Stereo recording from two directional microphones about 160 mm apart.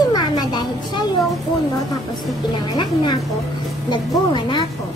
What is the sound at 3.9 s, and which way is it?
Speech, 30° left (ahead or behind).